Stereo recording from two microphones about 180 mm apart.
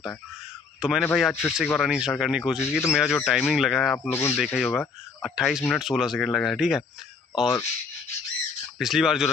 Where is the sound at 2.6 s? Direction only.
15° left (ahead or behind).